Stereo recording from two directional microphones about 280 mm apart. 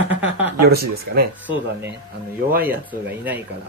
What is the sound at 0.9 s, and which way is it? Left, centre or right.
Speech, right.